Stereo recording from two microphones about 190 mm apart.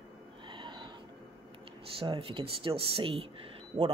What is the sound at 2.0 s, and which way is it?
Speech, 30° right (ahead or behind).